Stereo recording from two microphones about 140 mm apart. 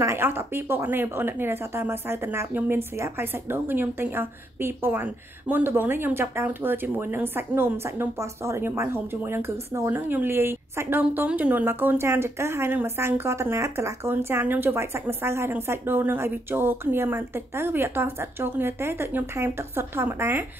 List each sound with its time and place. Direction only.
0.0 s a woman's voice: 15° right (ahead or behind)